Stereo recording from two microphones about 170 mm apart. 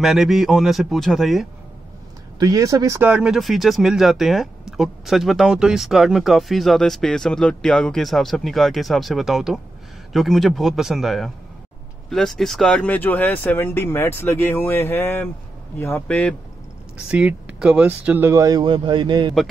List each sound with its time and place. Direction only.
0.0 s speech: centre (ahead or behind)
2.3 s speech: 20° right (ahead or behind)
3.1 s speech: 5° right (ahead or behind)
16.9 s speech: 5° right (ahead or behind); by 19.3 s 30° right (ahead or behind)